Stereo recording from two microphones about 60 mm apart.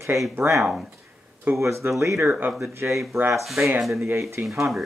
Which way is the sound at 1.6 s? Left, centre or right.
Right.